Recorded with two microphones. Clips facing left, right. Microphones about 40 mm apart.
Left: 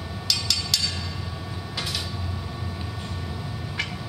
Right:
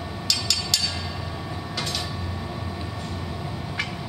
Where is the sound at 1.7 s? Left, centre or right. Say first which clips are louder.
Right 1 dB; centre.